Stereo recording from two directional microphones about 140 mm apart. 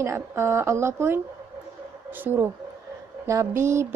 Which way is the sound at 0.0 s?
20° right (ahead or behind).